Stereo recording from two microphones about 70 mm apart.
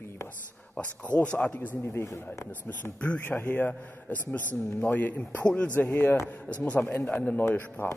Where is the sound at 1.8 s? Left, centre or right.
Left.